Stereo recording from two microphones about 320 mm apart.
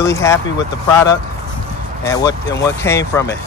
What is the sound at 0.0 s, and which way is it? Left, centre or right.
Speech, centre.